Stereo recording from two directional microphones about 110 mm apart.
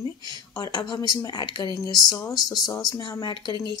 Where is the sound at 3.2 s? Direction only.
40° left (ahead or behind).